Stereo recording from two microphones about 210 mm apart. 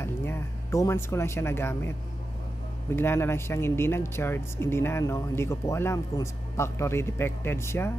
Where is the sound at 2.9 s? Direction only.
10° left (ahead or behind).